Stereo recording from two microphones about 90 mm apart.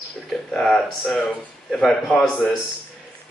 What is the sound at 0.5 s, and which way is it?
A man's voice, 5° left (ahead or behind).